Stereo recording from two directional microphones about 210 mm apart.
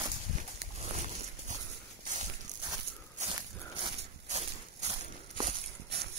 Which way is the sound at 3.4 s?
25° right (ahead or behind).